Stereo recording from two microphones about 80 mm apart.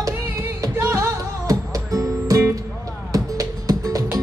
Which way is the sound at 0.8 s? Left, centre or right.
Right.